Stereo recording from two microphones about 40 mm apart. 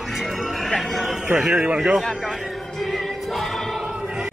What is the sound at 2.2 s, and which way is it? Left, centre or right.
Music, centre.